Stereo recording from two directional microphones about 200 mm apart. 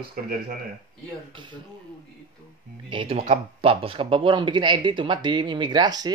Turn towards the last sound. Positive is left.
turn(degrees=-20)  # may be behind; listen again after turning